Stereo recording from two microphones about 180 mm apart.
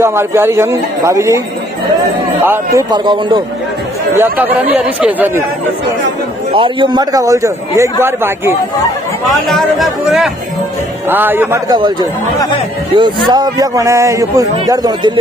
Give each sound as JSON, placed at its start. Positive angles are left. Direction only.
{"t": 0.0, "sound": "a man's voice", "side_deg": -15}
{"t": 2.4, "sound": "speech", "side_deg": -15}
{"t": 4.2, "sound": "a man's voice", "side_deg": -10}
{"t": 6.5, "sound": "speech", "side_deg": -30}
{"t": 9.5, "sound": "speech", "side_deg": 0}
{"t": 11.1, "sound": "a man's voice", "side_deg": -10}
{"t": 11.7, "sound": "speech", "side_deg": -25}